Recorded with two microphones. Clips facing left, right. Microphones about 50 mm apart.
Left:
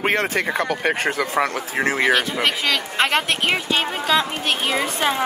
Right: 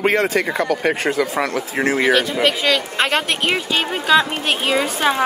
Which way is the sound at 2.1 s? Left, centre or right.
Centre.